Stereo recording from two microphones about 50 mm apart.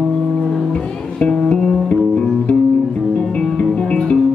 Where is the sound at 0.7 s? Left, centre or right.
Centre.